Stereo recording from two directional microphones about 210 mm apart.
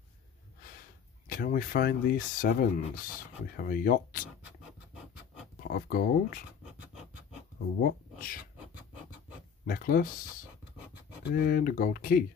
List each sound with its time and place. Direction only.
1.2 s speech: 40° left (ahead or behind)
5.6 s speech: 40° left (ahead or behind)
6.6 s scratch: 5° right (ahead or behind)
7.8 s speech: 40° left (ahead or behind)
9.7 s speech: 45° left (ahead or behind)
11.3 s speech: 45° left (ahead or behind)